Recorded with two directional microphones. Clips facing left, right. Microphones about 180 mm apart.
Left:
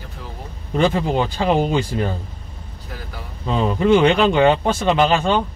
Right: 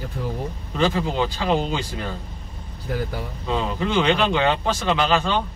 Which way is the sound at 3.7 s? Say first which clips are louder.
Left 8 dB; 50° left (ahead or behind).